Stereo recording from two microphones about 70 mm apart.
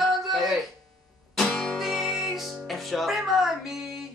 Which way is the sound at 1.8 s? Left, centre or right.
Centre.